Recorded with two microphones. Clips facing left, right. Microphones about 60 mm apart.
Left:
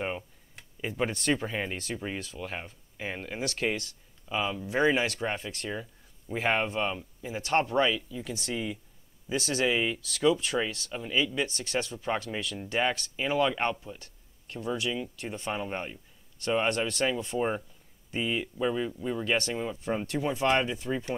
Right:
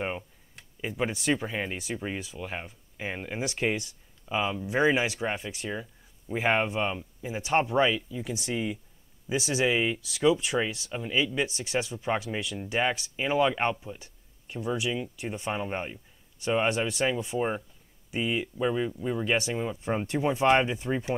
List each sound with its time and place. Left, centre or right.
0.6 s speech: centre; by 21.0 s right